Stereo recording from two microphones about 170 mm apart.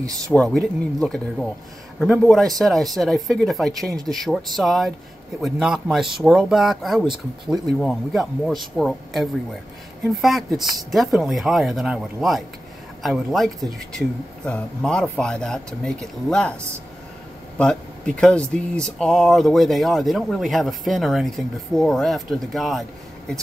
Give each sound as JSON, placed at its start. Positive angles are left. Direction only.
{"t": 0.0, "sound": "speech", "side_deg": -20}
{"t": 0.3, "sound": "speech", "side_deg": 5}
{"t": 17.6, "sound": "speech", "side_deg": 5}